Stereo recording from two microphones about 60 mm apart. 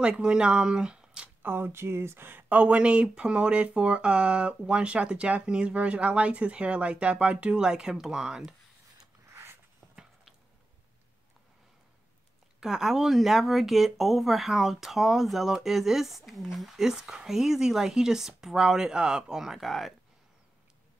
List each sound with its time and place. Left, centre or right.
0.0 s speech: centre
1.4 s speech: right
2.5 s speech: right
9.3 s a sound: right
12.5 s speech: centre